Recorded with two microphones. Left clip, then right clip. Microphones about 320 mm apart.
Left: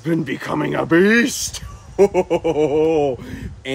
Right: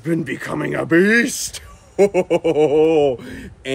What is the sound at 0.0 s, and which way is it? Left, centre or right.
Speech, centre.